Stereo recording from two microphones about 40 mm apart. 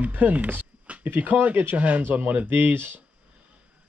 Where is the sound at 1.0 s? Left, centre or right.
Right.